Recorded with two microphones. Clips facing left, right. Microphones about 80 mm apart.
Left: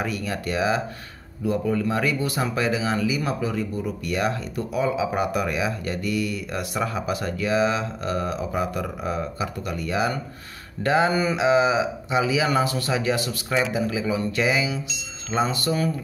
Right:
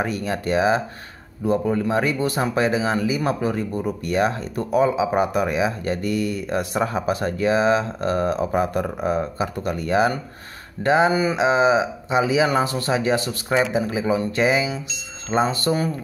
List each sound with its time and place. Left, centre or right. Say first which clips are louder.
0.0 s speech: right 3 dB; right
10.8 s speech: right 3 dB; right